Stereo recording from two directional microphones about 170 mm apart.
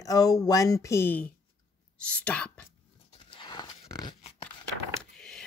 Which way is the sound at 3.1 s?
30° left (ahead or behind).